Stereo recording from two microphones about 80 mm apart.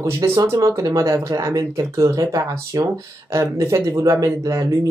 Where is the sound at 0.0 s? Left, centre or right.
Right.